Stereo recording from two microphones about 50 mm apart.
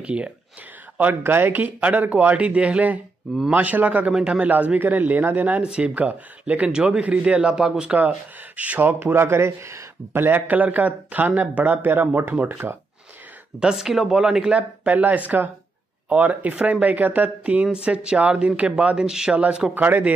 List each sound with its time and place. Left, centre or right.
0.0 s speech: right
0.9 s a man's voice: right
4.1 s speech: centre
4.4 s a man's voice: right
5.6 s speech: right
8.5 s a man's voice: right
9.1 s speech: right
10.1 s a man's voice: right
13.7 s speech: centre
14.9 s a man's voice: right
17.6 s speech: centre
19.7 s a man's voice: right